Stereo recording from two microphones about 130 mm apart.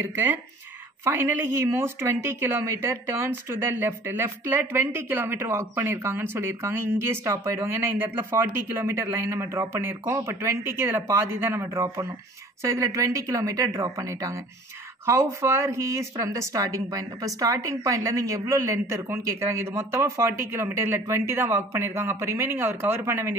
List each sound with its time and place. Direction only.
0.0 s speech: 15° right (ahead or behind)